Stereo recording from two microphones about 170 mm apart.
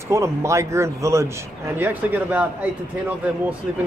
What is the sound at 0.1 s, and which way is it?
Speech, 15° right (ahead or behind).